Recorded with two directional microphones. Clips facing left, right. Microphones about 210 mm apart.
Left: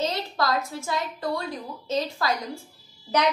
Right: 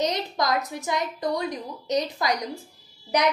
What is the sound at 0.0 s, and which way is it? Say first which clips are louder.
A woman's voice: right 1 dB; 15° right (ahead or behind).